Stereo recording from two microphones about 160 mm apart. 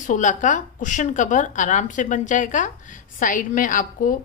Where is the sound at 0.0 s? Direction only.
55° left (ahead or behind).